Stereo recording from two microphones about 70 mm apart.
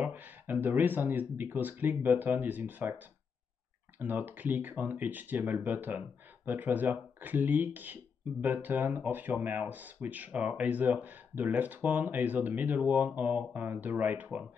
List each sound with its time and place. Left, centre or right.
0.0 s speech: right